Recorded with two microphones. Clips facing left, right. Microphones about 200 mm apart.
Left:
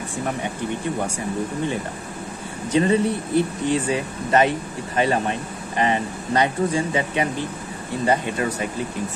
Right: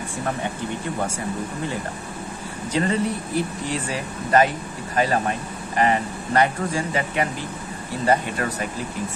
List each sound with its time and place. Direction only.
2.7 s speech: 20° left (ahead or behind)